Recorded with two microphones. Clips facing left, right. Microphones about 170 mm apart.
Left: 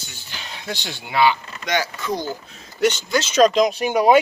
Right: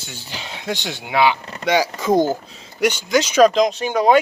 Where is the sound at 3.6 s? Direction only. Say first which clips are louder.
Even; 10° left (ahead or behind).